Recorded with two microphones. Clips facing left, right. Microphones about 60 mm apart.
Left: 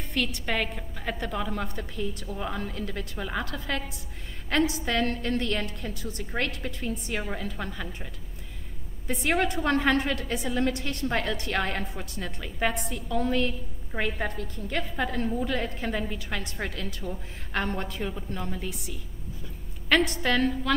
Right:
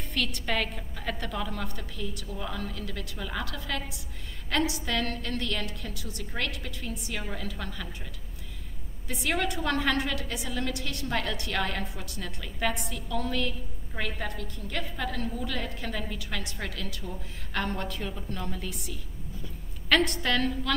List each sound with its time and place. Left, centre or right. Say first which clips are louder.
0.1 s a woman's voice: left 1 dB; centre
9.0 s a woman's voice: left 4 dB; left